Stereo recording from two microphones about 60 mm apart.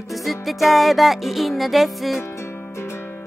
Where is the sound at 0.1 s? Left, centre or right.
Centre.